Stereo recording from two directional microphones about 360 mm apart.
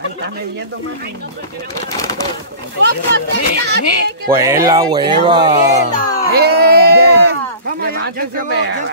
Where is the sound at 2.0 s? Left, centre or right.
Centre.